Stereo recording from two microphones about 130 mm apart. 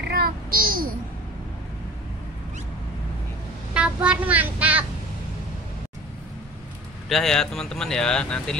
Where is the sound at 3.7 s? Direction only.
10° right (ahead or behind).